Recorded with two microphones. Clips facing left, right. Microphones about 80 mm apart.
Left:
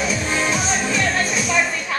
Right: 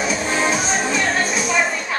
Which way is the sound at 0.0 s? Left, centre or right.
Right.